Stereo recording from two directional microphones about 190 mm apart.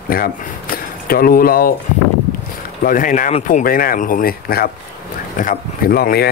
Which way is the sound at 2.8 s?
45° left (ahead or behind).